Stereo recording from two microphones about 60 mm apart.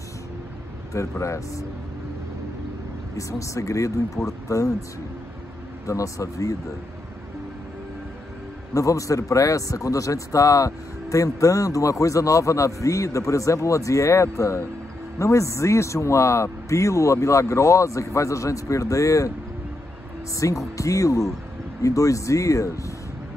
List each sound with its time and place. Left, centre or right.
1.2 s speech: left
3.2 s speech: left
5.9 s speech: left
8.7 s speech: left
20.3 s speech: left